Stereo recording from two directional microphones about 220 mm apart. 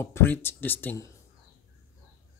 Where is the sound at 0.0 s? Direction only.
10° left (ahead or behind).